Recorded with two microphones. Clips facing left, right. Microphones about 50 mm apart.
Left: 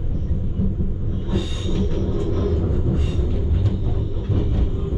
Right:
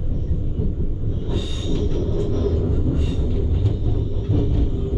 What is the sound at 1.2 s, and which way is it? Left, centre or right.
Train, centre.